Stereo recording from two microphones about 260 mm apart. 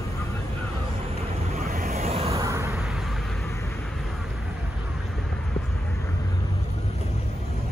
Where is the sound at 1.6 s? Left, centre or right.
Right.